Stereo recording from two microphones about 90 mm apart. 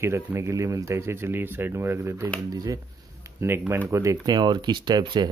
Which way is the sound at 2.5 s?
40° right (ahead or behind).